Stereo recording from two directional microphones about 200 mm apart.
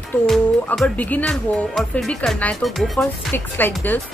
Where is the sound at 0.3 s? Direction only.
5° left (ahead or behind).